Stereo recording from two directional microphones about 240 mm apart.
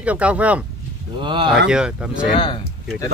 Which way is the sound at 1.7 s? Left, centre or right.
Centre.